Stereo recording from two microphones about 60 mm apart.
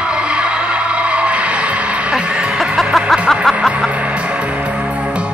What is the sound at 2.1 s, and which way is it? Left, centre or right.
Music, centre.